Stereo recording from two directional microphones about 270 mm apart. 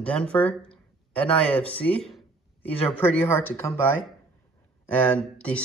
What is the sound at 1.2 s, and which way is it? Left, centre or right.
Speech, centre.